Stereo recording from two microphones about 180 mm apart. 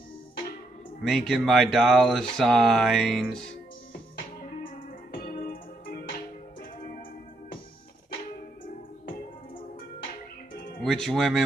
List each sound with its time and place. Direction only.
1.0 s speech: centre (ahead or behind)
5.2 s music: 50° left (ahead or behind)
10.8 s speech: centre (ahead or behind)